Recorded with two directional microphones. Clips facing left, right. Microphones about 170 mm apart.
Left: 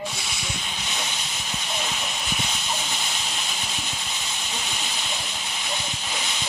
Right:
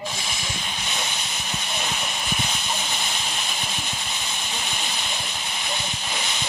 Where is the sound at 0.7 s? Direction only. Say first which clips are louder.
Right 2 dB; 55° right (ahead or behind).